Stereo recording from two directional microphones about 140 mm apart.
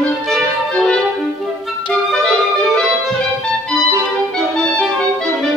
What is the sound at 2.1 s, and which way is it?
Music, 5° left (ahead or behind).